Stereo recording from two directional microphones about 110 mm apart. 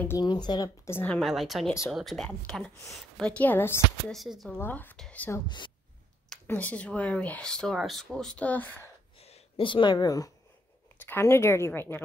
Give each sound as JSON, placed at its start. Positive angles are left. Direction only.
{"t": 0.2, "sound": "speech", "side_deg": 40}
{"t": 0.8, "sound": "speech", "side_deg": 15}
{"t": 1.2, "sound": "a woman's voice", "side_deg": 0}
{"t": 4.1, "sound": "a woman's voice", "side_deg": 0}
{"t": 4.6, "sound": "speech", "side_deg": 15}
{"t": 4.9, "sound": "whispering", "side_deg": 5}
{"t": 6.4, "sound": "speech", "side_deg": 15}
{"t": 9.6, "sound": "speech", "side_deg": 50}
{"t": 11.1, "sound": "speech", "side_deg": 20}